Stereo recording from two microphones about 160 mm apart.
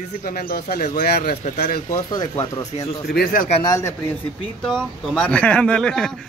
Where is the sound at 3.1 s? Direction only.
70° left (ahead or behind).